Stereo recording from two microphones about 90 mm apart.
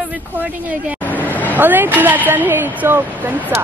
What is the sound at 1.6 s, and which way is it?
Speech, 20° right (ahead or behind).